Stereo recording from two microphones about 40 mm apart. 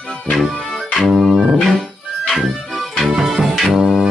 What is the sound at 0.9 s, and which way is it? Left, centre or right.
Music, centre.